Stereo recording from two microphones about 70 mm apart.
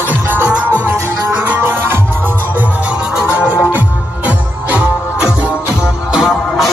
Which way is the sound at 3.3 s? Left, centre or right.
Left.